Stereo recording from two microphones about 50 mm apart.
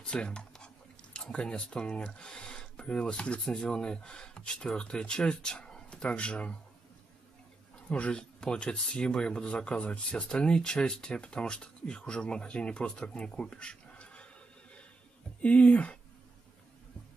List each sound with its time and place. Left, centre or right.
0.0 s a sound: left
1.1 s speech: centre
7.9 s speech: left